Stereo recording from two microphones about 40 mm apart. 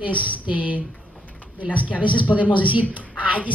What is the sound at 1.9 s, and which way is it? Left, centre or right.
Speech, left.